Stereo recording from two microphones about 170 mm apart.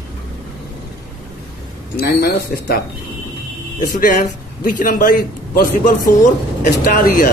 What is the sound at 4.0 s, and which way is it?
A man's voice, 55° left (ahead or behind).